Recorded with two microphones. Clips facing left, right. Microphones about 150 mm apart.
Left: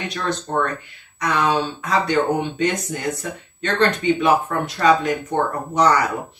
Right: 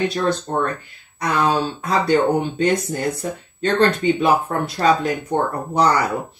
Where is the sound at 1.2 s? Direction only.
35° right (ahead or behind).